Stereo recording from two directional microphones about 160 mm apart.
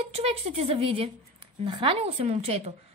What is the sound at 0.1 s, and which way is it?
A woman's voice, 40° right (ahead or behind).